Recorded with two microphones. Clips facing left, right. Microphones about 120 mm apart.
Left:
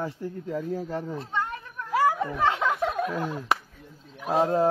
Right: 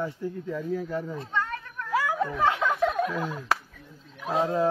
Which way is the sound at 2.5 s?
30° left (ahead or behind).